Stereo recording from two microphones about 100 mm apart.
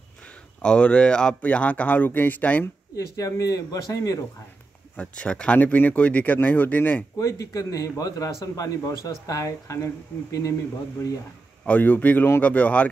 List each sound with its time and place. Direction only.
0.6 s speech: 10° left (ahead or behind)
3.2 s a man's voice: 35° left (ahead or behind)
4.9 s speech: 10° left (ahead or behind)
7.2 s a man's voice: 35° left (ahead or behind)
10.1 s speech: 15° left (ahead or behind)
11.6 s speech: 15° left (ahead or behind)